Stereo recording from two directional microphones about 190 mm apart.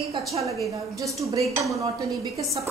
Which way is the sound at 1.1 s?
15° right (ahead or behind).